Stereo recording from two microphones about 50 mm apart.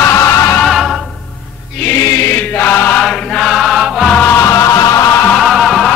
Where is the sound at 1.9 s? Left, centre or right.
Left.